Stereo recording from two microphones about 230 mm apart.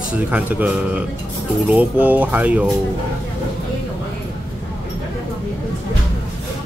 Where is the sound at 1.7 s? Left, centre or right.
Centre.